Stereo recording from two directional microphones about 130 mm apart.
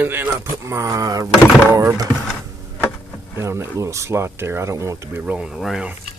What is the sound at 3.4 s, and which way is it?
Speech, 20° right (ahead or behind).